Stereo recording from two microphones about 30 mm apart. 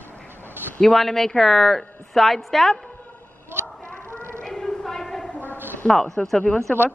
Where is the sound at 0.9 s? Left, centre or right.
Centre.